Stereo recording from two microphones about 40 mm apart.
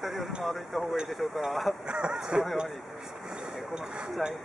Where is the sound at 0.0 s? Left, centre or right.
Centre.